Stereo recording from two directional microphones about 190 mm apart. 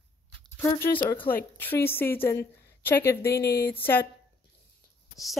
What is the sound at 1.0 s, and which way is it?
Speech, 25° left (ahead or behind).